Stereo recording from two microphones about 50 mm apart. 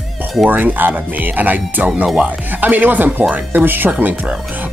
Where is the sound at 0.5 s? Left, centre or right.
Right.